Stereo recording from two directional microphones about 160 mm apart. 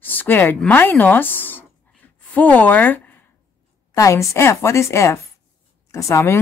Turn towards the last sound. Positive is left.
turn(degrees=15)  # may be behind; listen again after turning